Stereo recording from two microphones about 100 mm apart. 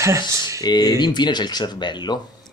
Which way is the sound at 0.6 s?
45° left (ahead or behind).